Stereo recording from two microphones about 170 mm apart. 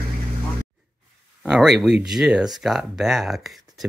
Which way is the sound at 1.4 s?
Centre (ahead or behind).